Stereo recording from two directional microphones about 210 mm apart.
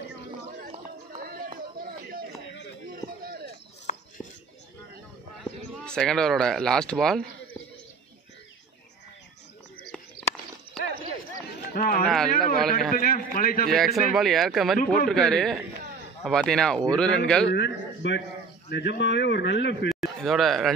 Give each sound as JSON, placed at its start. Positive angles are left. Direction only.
{"t": 0.6, "sound": "a sound", "side_deg": -40}
{"t": 2.9, "sound": "run", "side_deg": -45}
{"t": 3.9, "sound": "a sound", "side_deg": 35}
{"t": 5.4, "sound": "speech", "side_deg": 0}
{"t": 11.7, "sound": "speech", "side_deg": 45}
{"t": 12.1, "sound": "speech", "side_deg": 0}
{"t": 12.9, "sound": "a man's voice", "side_deg": 40}
{"t": 13.7, "sound": "speech", "side_deg": 0}
{"t": 17.5, "sound": "speech", "side_deg": 55}
{"t": 19.9, "sound": "speech", "side_deg": 0}